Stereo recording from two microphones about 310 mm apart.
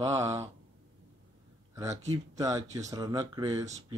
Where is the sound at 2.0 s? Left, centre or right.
Centre.